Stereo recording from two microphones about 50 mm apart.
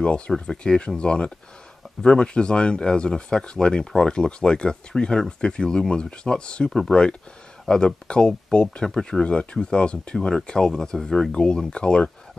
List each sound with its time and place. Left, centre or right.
0.3 s speech: centre